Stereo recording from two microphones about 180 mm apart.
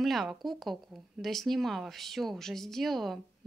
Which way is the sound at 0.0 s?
Centre (ahead or behind).